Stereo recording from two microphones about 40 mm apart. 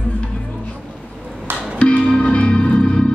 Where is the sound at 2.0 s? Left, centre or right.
Centre.